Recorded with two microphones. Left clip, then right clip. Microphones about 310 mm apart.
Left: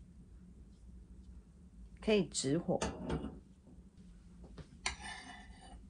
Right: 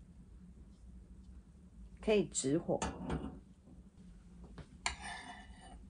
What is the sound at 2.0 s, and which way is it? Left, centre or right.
Speech, left.